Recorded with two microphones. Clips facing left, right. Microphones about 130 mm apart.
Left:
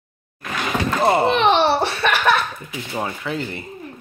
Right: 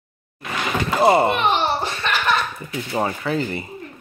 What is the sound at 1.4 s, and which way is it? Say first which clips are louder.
Laughter: left 4 dB; 80° left.